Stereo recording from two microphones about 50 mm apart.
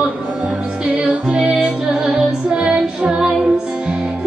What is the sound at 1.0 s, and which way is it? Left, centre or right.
Music, centre.